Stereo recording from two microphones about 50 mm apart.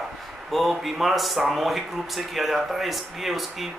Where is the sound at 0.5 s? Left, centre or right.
Centre.